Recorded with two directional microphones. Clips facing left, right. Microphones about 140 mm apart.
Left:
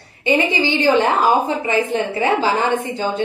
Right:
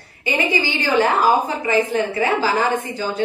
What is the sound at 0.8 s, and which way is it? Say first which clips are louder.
A woman's voice: left 2 dB; 25° left (ahead or behind).